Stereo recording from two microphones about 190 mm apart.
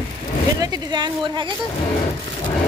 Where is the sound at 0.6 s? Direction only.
20° right (ahead or behind).